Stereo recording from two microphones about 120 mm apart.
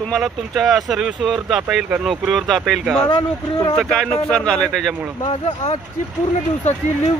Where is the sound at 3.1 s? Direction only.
40° left (ahead or behind).